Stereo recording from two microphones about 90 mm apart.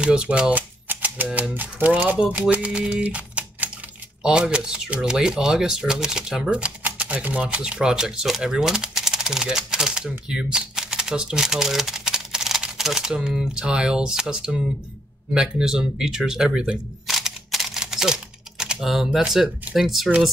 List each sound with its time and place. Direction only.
0.0 s speech: 10° right (ahead or behind)